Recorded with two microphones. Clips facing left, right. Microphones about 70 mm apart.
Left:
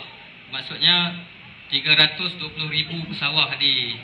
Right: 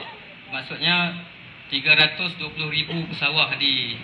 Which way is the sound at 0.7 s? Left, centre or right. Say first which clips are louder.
Even; left.